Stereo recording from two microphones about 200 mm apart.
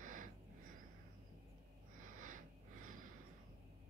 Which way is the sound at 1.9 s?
40° right (ahead or behind).